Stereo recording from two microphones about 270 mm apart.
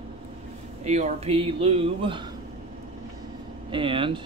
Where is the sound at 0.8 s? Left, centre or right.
Right.